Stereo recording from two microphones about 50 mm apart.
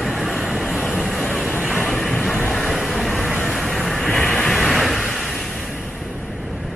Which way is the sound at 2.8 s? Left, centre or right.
Centre.